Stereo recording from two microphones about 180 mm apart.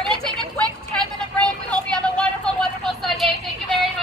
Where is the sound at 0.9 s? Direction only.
5° left (ahead or behind).